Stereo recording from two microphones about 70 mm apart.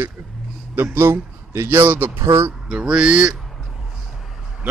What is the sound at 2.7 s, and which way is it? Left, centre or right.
Mantra, centre.